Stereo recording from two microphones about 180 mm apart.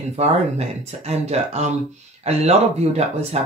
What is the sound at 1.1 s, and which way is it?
Speech, 35° right (ahead or behind).